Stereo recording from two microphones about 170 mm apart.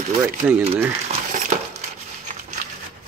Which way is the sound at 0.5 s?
10° right (ahead or behind).